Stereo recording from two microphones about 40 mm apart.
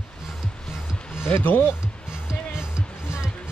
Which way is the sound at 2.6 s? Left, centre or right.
Right.